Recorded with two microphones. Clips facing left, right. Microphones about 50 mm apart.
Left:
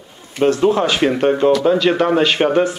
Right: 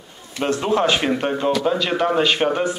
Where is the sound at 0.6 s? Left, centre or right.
Centre.